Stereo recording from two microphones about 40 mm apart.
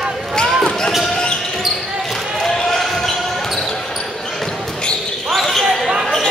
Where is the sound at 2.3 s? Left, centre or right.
Centre.